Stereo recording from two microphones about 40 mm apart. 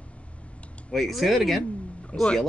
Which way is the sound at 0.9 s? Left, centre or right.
Centre.